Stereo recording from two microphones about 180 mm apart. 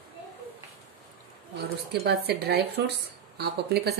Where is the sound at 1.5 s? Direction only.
65° right (ahead or behind).